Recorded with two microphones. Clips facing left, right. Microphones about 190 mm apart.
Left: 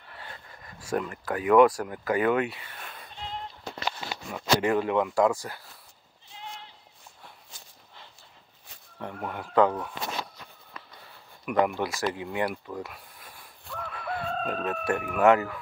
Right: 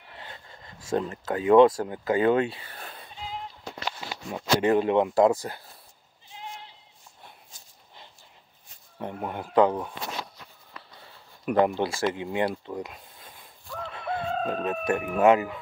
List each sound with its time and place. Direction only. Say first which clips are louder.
0.1 s speech: even; 25° right (ahead or behind)
4.3 s speech: right 2 dB; 25° right (ahead or behind)
8.9 s speech: right 2 dB; 20° right (ahead or behind)
11.4 s speech: right 3 dB; 30° right (ahead or behind)